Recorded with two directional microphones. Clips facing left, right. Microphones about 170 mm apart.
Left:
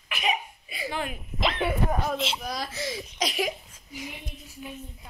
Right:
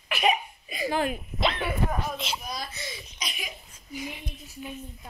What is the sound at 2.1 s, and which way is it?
A child's voice, 90° left.